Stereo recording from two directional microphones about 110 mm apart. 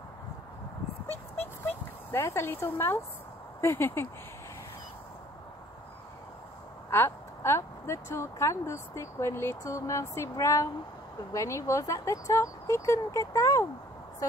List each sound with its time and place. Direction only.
1.7 s speech: 20° left (ahead or behind)
6.9 s speech: 20° left (ahead or behind)